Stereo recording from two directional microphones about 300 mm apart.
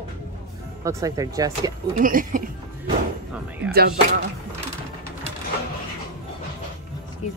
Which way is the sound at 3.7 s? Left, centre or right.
Right.